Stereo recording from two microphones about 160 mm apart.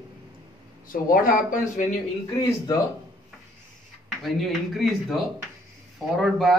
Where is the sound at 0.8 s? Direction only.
60° left (ahead or behind).